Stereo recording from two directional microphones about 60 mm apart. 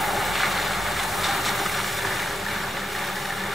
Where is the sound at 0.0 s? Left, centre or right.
Centre.